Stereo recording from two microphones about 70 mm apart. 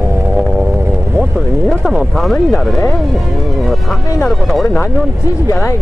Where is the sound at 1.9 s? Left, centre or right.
Centre.